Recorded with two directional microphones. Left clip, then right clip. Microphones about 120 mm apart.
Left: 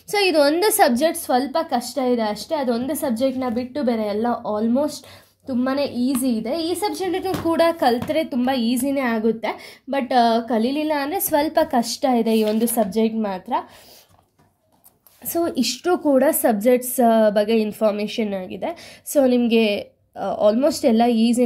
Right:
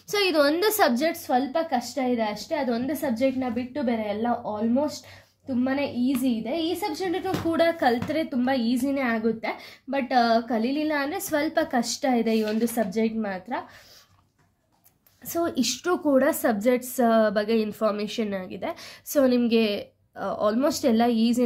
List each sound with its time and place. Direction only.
0.1 s a woman's voice: 15° left (ahead or behind); by 6.9 s 55° left (ahead or behind)
6.9 s a woman's voice: 40° left (ahead or behind)
15.2 s a woman's voice: 25° left (ahead or behind)